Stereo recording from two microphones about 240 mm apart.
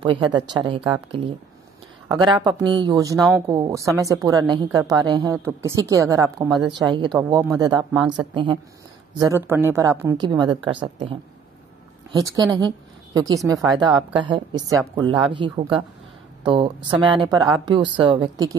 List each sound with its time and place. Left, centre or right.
0.0 s a woman's voice: centre
3.2 s speech: centre
3.4 s a woman's voice: centre